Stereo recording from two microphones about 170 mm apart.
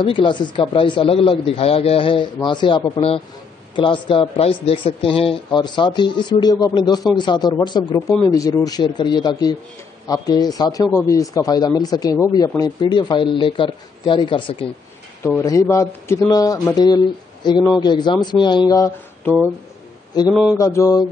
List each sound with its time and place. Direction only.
0.0 s a man's voice: 30° left (ahead or behind)
15.2 s a man's voice: 15° left (ahead or behind)
20.5 s mantra: 20° left (ahead or behind)